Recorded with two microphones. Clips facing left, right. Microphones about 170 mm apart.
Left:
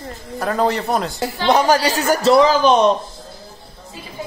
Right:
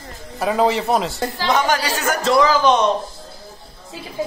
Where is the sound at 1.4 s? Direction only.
30° left (ahead or behind).